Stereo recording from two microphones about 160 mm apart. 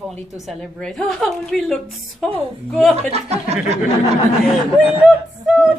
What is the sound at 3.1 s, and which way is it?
Speech, 40° right (ahead or behind).